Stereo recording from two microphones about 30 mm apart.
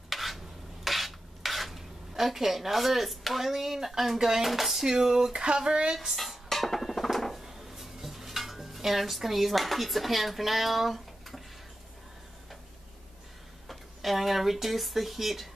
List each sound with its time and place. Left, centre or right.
0.1 s stir: centre
0.8 s dishes: centre
4.5 s speech: centre
4.8 s speech: centre
5.3 s a sound: right
6.1 s music: centre
7.4 s dishes: centre
13.7 s speech: centre